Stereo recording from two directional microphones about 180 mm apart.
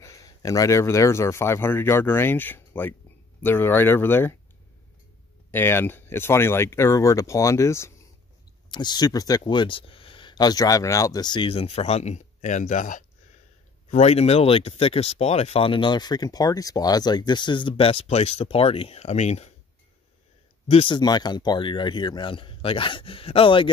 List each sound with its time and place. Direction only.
0.0 s speech: 20° left (ahead or behind)
5.5 s speech: 10° left (ahead or behind); by 19.5 s 40° left (ahead or behind)
20.7 s speech: 30° left (ahead or behind)